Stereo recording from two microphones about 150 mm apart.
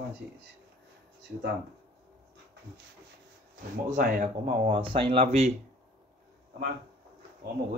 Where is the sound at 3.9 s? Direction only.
60° right (ahead or behind).